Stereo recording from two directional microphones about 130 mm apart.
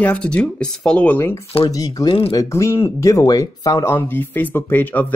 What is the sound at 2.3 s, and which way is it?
Speech, 25° left (ahead or behind).